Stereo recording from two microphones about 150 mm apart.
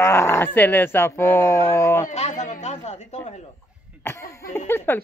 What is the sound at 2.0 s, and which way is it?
Chatter, 50° left (ahead or behind).